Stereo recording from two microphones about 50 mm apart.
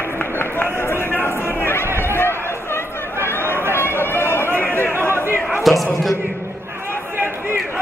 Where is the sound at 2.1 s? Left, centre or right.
Left.